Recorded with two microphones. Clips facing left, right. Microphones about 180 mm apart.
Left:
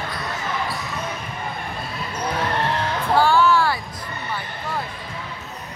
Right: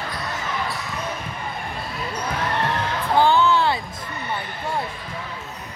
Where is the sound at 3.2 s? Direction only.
20° right (ahead or behind).